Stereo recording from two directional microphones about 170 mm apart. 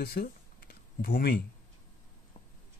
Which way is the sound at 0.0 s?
65° left (ahead or behind).